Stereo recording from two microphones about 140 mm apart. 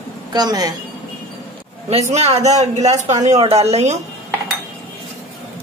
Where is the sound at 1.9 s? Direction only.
50° right (ahead or behind).